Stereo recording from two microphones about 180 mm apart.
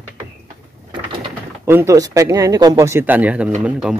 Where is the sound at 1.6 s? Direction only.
15° right (ahead or behind).